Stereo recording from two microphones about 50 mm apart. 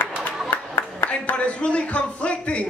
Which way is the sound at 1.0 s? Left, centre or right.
Left.